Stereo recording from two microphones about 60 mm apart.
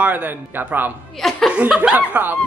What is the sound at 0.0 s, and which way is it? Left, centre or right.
Speech, right.